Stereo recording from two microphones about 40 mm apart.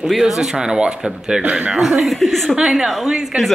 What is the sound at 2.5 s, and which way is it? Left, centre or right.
Speech, centre.